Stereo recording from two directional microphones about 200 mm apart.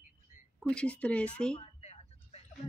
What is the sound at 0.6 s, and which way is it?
Speech, 5° left (ahead or behind).